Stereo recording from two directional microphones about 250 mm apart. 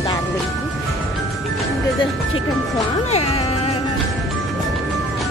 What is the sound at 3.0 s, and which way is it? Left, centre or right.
Speech, left.